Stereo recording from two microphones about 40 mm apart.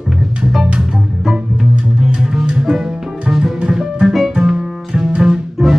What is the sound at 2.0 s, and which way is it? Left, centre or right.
Music, centre.